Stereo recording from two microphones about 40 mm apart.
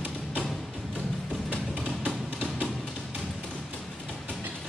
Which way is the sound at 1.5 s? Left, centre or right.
Left.